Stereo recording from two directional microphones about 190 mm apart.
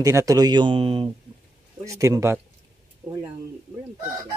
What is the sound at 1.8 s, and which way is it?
Speech, 15° right (ahead or behind).